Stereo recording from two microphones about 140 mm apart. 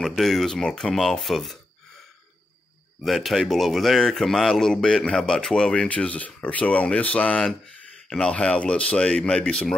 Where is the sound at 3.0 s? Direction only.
Centre (ahead or behind).